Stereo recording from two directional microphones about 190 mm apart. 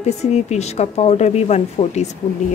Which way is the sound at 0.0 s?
35° left (ahead or behind).